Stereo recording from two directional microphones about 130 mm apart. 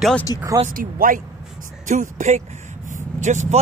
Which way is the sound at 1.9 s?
75° right (ahead or behind).